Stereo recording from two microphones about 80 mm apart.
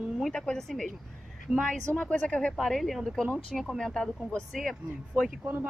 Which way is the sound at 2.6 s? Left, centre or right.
Centre.